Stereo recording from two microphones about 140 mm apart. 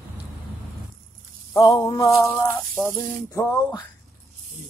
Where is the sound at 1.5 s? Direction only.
25° left (ahead or behind).